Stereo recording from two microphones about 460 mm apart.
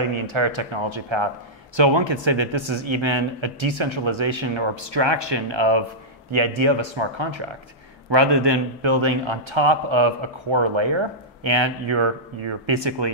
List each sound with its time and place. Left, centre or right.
0.0 s speech: right
6.3 s speech: right
8.1 s a man's voice: right